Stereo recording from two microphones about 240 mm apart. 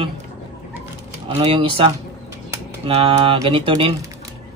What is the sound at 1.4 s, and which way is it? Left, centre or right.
Speech, right.